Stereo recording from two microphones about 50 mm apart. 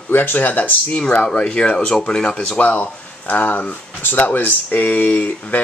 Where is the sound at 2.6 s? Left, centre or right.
Left.